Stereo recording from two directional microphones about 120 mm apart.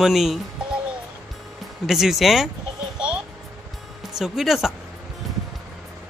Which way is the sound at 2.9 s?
10° right (ahead or behind).